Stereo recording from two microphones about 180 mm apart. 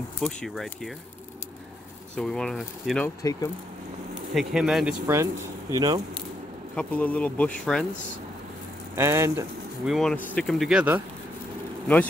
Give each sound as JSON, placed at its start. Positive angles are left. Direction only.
{"t": 0.2, "sound": "speech", "side_deg": 0}
{"t": 2.1, "sound": "speech", "side_deg": 5}
{"t": 3.2, "sound": "speech", "side_deg": 20}
{"t": 4.3, "sound": "speech", "side_deg": 0}
{"t": 5.0, "sound": "speech", "side_deg": -15}
{"t": 6.7, "sound": "speech", "side_deg": 5}
{"t": 8.9, "sound": "speech", "side_deg": -15}
{"t": 9.8, "sound": "speech", "side_deg": 0}